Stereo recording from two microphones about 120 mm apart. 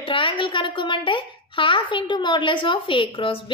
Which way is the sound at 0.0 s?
45° left (ahead or behind).